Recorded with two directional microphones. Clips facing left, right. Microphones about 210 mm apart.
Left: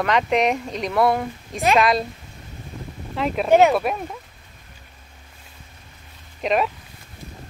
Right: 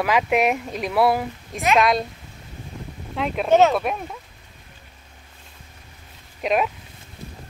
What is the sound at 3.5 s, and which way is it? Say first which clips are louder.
Speech: left 1 dB; 10° left (ahead or behind).